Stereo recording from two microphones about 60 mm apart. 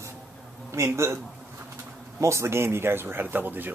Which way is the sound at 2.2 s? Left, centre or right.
Right.